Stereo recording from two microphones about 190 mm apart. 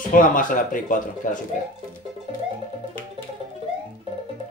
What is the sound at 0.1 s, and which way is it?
Speech, 45° left (ahead or behind).